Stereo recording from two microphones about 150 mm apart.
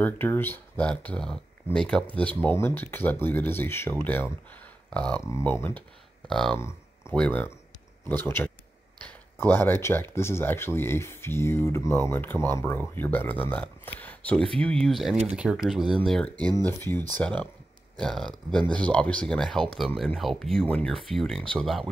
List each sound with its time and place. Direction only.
0.0 s speech: 15° left (ahead or behind)
6.2 s speech: 5° left (ahead or behind)